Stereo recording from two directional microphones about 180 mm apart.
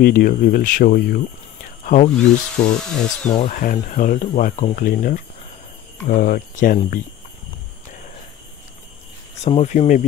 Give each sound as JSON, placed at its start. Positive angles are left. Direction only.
{"t": 0.0, "sound": "speech", "side_deg": 50}
{"t": 2.1, "sound": "speech", "side_deg": 5}
{"t": 3.3, "sound": "speech", "side_deg": 45}
{"t": 9.4, "sound": "speech", "side_deg": 35}